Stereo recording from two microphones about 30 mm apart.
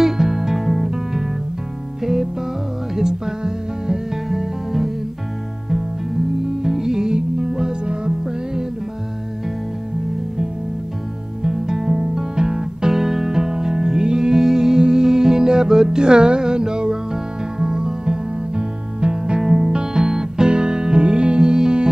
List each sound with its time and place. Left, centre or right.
0.0 s music: centre
3.0 s music: centre
6.6 s music: centre
7.8 s music: right
11.4 s music: centre
19.4 s music: centre